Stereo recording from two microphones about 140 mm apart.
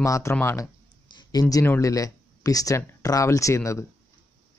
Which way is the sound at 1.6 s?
15° left (ahead or behind).